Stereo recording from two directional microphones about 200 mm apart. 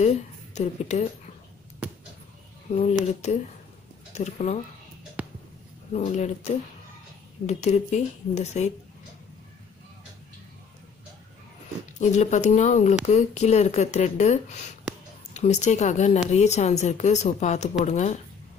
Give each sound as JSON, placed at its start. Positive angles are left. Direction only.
{"t": 0.0, "sound": "a woman's voice", "side_deg": 35}
{"t": 2.7, "sound": "speech", "side_deg": 35}
{"t": 5.2, "sound": "a sound", "side_deg": -5}
{"t": 5.9, "sound": "speech", "side_deg": 35}
{"t": 12.0, "sound": "speech", "side_deg": 35}